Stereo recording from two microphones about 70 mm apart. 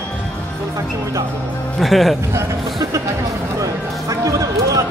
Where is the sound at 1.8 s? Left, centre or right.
Centre.